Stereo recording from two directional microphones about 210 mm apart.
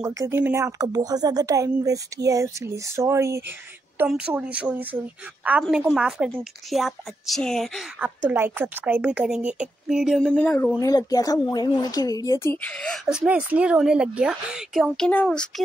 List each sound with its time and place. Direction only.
0.2 s a woman's voice: 10° right (ahead or behind)
8.3 s a woman's voice: 10° right (ahead or behind)